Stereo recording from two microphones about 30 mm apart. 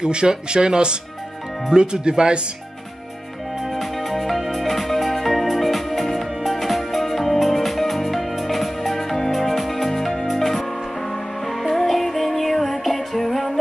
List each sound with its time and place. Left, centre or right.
0.0 s speech: right
3.7 s music: centre